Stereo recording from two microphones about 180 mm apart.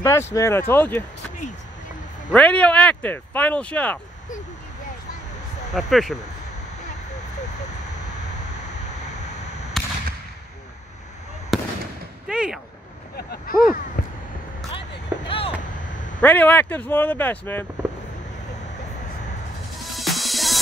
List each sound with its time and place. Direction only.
0.0 s speech: 15° left (ahead or behind)
2.3 s speech: 5° left (ahead or behind)
5.7 s speech: centre (ahead or behind)
9.8 s fireworks: centre (ahead or behind)
11.5 s fireworks: centre (ahead or behind)
12.3 s a sound: 5° right (ahead or behind)
13.1 s a sound: 60° left (ahead or behind)
15.2 s vehicle: 30° left (ahead or behind)
16.2 s speech: 10° left (ahead or behind)
19.8 s music: centre (ahead or behind)